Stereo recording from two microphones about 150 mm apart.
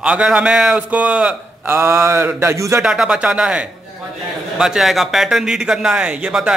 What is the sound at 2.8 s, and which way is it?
A man's voice, 5° right (ahead or behind).